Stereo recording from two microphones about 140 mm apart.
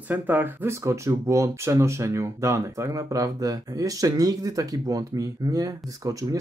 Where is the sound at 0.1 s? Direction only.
15° right (ahead or behind).